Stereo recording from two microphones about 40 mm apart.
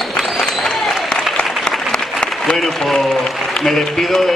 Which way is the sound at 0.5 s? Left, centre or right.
Centre.